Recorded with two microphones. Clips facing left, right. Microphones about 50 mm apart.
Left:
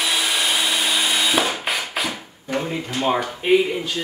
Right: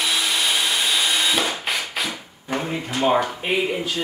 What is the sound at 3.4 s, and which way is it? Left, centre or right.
Speech, centre.